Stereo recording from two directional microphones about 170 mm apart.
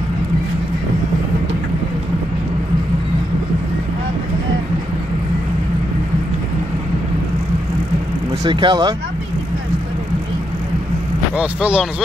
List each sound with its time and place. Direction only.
8.5 s speech: 25° right (ahead or behind)
11.3 s speech: 5° right (ahead or behind)